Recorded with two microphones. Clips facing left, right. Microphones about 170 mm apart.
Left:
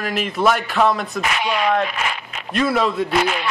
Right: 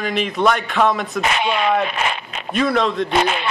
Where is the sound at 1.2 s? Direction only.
25° right (ahead or behind).